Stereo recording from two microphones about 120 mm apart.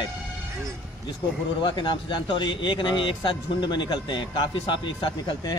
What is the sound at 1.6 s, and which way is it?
Speech, 40° left (ahead or behind).